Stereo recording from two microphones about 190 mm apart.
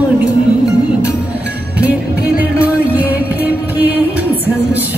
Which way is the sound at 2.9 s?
10° right (ahead or behind).